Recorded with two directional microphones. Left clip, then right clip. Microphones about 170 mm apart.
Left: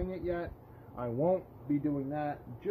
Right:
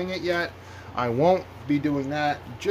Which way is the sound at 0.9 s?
40° right (ahead or behind).